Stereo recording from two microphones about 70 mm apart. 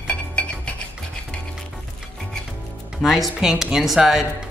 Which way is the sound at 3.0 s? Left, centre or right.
Centre.